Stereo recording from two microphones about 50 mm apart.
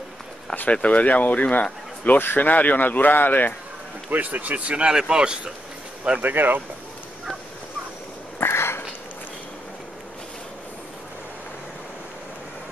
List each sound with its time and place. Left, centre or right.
0.7 s speech: left
4.1 s a man's voice: right; by 5.5 s centre
6.2 s speech: right
8.4 s a sound: left